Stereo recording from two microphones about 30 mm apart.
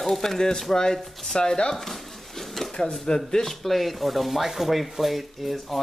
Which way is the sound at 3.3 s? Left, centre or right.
Centre.